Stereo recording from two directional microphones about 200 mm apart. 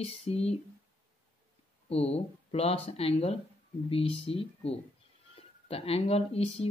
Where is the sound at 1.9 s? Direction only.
30° left (ahead or behind).